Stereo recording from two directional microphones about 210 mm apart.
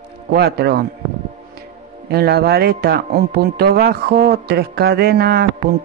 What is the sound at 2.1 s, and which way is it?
Speech, 50° right (ahead or behind).